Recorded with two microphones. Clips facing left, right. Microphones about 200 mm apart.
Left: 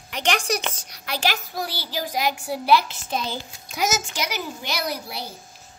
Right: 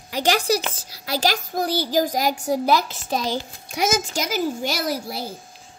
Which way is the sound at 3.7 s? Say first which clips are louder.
Right 3 dB; 30° right (ahead or behind).